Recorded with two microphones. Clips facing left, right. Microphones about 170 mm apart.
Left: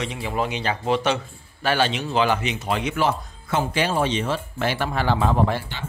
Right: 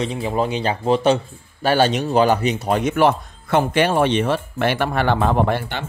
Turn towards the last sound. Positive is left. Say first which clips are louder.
# right 3 dB
turn(degrees=-60)  # may be behind; listen again after turning